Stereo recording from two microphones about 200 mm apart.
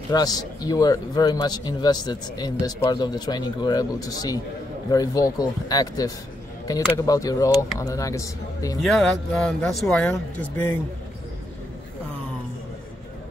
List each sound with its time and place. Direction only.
0.1 s speech: 20° left (ahead or behind)
8.8 s speech: centre (ahead or behind)